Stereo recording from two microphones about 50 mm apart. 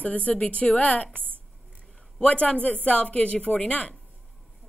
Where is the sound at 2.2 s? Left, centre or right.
Left.